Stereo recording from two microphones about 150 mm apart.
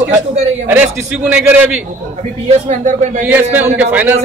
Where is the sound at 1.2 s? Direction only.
10° right (ahead or behind).